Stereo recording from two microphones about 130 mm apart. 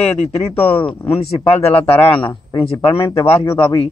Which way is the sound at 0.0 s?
50° left (ahead or behind).